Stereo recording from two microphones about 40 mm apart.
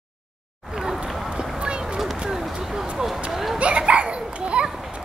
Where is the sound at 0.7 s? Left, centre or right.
Centre.